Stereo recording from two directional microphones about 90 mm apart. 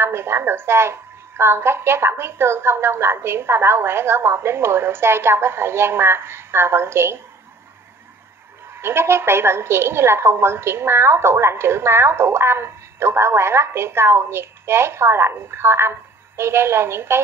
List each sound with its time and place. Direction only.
0.0 s a woman's voice: 25° right (ahead or behind)
8.7 s a woman's voice: 25° right (ahead or behind)